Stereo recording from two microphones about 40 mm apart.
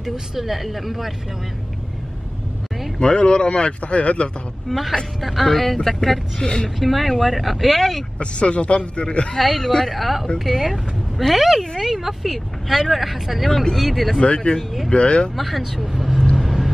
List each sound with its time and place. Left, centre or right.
0.0 s speech: centre
3.0 s speech: left
4.6 s speech: centre
6.4 s speech: centre
6.8 s speech: centre
8.2 s speech: left
9.4 s speech: centre
14.2 s speech: left
15.3 s speech: centre
16.3 s vehicle: centre